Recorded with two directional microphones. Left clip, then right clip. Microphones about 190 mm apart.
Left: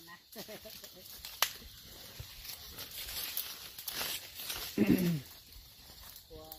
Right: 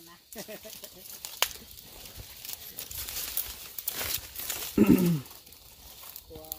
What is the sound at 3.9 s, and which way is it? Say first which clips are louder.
Crumpling: right 3 dB; 45° right (ahead or behind).